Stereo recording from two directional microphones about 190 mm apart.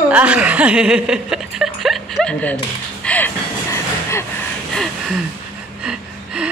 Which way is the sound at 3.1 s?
10° left (ahead or behind).